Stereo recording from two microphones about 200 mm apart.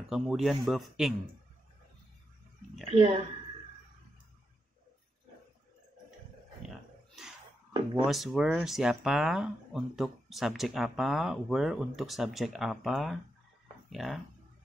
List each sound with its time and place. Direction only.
0.1 s speech: centre (ahead or behind)
2.9 s speech: 30° right (ahead or behind)
8.1 s speech: centre (ahead or behind)